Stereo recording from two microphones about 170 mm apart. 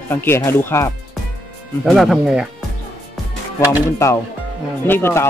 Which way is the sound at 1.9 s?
Centre (ahead or behind).